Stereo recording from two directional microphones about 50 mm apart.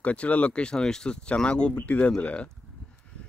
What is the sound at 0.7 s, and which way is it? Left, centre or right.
Speech, centre.